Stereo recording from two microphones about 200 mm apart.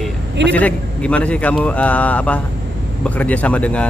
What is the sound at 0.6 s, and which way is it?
Speech, 5° left (ahead or behind).